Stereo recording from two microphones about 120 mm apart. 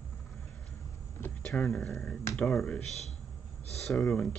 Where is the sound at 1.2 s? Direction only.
15° left (ahead or behind).